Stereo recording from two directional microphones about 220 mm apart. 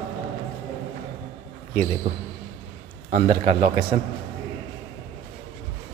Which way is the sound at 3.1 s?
25° right (ahead or behind).